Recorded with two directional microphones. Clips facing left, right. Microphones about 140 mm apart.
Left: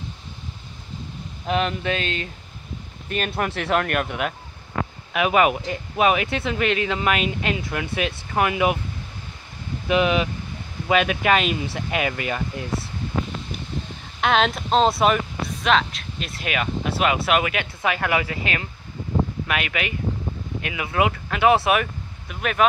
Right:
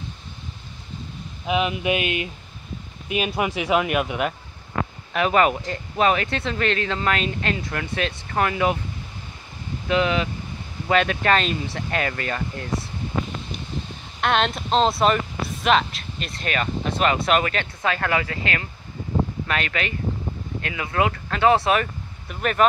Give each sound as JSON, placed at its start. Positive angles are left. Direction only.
{"t": 1.4, "sound": "speech", "side_deg": -5}
{"t": 5.1, "sound": "speech", "side_deg": 10}
{"t": 9.8, "sound": "speech", "side_deg": 15}
{"t": 14.2, "sound": "speech", "side_deg": 0}